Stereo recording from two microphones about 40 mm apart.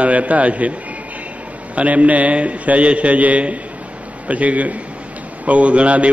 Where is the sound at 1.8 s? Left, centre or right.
Right.